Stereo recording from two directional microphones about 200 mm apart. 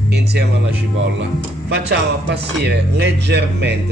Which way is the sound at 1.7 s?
55° right (ahead or behind).